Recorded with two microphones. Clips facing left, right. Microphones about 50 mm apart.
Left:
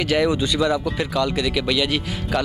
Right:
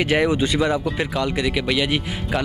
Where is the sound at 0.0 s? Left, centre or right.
Right.